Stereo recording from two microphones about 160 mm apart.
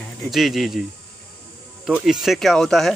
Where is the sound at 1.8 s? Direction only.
5° right (ahead or behind).